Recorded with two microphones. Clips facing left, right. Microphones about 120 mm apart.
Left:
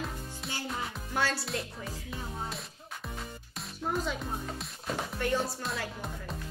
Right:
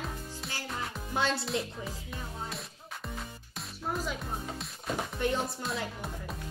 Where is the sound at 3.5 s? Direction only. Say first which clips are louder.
Left 2 dB; centre (ahead or behind).